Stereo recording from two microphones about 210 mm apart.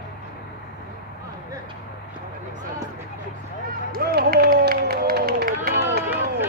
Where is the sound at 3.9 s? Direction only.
45° right (ahead or behind).